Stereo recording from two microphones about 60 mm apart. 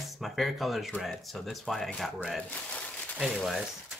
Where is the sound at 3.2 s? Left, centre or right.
Centre.